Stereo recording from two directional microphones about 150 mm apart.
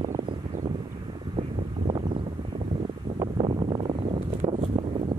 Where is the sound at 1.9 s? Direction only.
35° right (ahead or behind).